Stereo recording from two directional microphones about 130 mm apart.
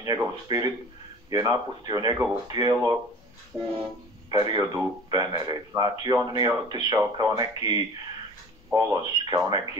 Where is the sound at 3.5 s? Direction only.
20° right (ahead or behind).